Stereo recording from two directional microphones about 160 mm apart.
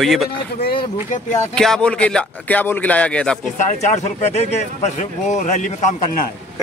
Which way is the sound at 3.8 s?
45° left (ahead or behind).